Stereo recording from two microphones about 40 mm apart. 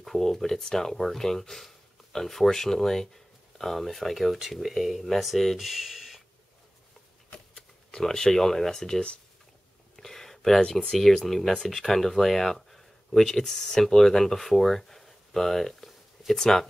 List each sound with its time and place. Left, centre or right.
0.0 s speech: centre
7.3 s shuffling cards: centre
8.0 s speech: centre
9.9 s a sound: centre
10.6 s speech: centre
11.0 s speech: centre